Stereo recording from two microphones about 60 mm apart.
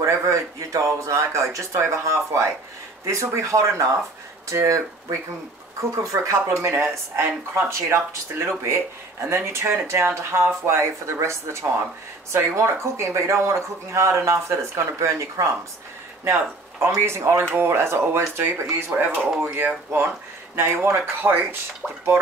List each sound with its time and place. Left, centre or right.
0.0 s speech: right
16.8 s speech: right
19.1 s speech: centre
19.4 s speech: right
20.5 s speech: right